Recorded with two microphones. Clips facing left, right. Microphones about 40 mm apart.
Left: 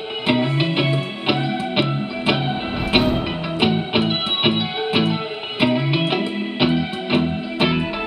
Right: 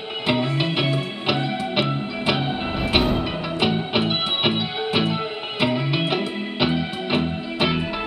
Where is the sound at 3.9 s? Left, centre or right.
Centre.